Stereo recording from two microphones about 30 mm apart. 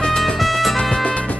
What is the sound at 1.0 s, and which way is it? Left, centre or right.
Music, left.